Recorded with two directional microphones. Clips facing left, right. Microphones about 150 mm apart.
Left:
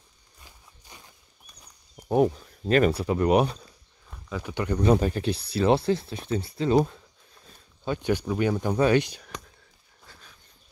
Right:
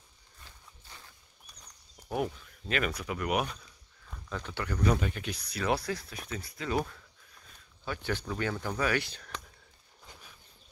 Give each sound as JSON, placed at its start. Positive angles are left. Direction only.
{"t": 0.4, "sound": "walk", "side_deg": 15}
{"t": 2.0, "sound": "speech", "side_deg": 35}
{"t": 4.1, "sound": "speech", "side_deg": 10}